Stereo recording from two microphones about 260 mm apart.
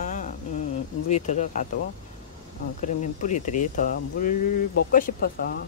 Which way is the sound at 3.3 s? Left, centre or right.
Left.